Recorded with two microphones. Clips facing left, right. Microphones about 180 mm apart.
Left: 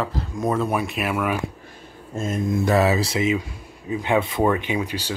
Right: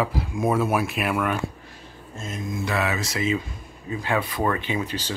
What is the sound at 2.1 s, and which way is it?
Speech, 50° left (ahead or behind).